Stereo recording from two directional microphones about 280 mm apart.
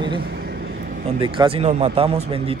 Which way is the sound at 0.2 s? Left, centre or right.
Right.